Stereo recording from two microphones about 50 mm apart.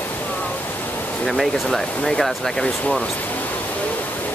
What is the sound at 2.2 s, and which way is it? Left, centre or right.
Speech, centre.